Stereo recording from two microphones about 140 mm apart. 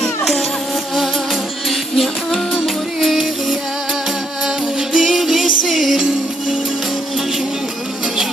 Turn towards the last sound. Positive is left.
turn(degrees=0)  # may be behind; listen again after turning